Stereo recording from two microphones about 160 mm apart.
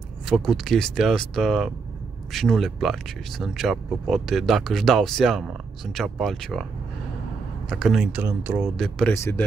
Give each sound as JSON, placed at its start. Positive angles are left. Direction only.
{"t": 0.3, "sound": "speech", "side_deg": 0}
{"t": 7.7, "sound": "speech", "side_deg": 0}
{"t": 8.7, "sound": "speech", "side_deg": 0}
{"t": 9.1, "sound": "a man's voice", "side_deg": 15}